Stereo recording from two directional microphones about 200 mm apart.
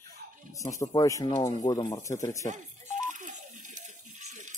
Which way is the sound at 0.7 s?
15° left (ahead or behind).